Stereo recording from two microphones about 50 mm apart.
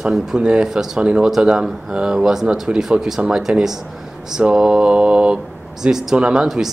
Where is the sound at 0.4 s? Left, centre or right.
Centre.